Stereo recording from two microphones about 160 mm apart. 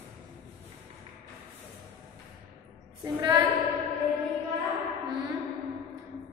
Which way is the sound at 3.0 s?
25° right (ahead or behind).